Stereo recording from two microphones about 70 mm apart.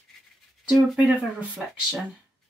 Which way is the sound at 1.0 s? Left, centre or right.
Centre.